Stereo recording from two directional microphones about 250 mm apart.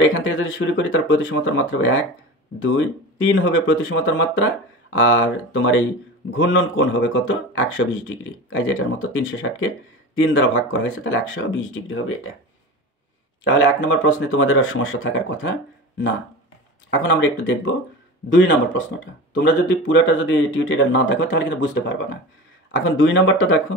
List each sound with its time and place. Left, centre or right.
0.2 s speech: left
13.4 s speech: left
16.9 s speech: left